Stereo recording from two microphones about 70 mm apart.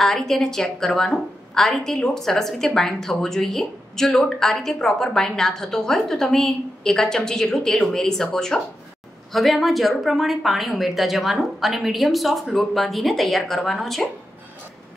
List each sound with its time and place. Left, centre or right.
0.0 s a woman's voice: centre